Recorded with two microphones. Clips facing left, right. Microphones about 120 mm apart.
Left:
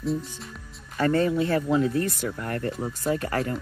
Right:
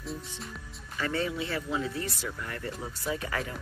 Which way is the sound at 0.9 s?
45° left (ahead or behind).